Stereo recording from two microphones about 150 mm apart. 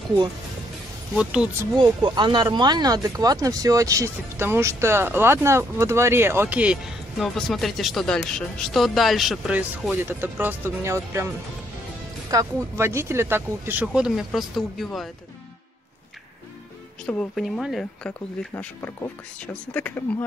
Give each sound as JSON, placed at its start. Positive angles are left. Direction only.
{"t": 1.1, "sound": "speech", "side_deg": -5}
{"t": 1.8, "sound": "speech", "side_deg": -30}
{"t": 12.3, "sound": "speech", "side_deg": -20}
{"t": 17.0, "sound": "speech", "side_deg": 5}
{"t": 18.5, "sound": "speech", "side_deg": 15}